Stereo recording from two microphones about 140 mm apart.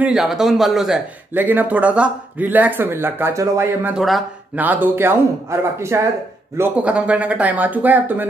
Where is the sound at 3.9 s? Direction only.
Centre (ahead or behind); by 6.0 s 20° right (ahead or behind).